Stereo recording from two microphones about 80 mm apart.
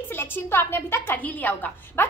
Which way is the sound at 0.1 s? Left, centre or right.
Left.